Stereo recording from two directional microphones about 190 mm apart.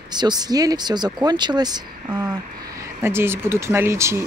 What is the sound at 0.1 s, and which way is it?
Speech, 20° right (ahead or behind).